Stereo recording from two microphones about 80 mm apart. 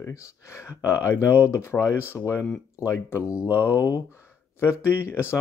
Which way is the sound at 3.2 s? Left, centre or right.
Centre.